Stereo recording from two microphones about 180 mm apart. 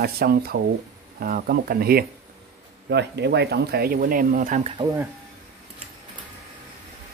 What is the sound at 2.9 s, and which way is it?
Speech, 70° right (ahead or behind).